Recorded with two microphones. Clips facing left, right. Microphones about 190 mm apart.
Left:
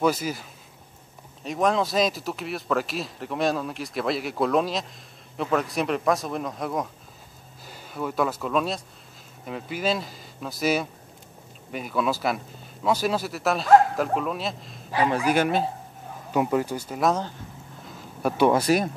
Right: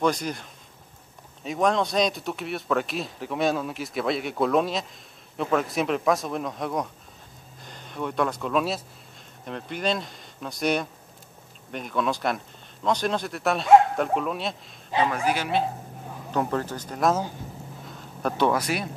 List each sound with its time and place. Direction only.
0.0 s speech: 5° left (ahead or behind)
15.2 s speech: 50° left (ahead or behind)
16.3 s speech: 10° left (ahead or behind)
17.8 s a sound: 5° left (ahead or behind)
18.5 s speech: 30° left (ahead or behind)